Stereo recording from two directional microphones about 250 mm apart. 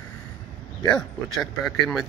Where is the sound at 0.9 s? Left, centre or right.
Centre.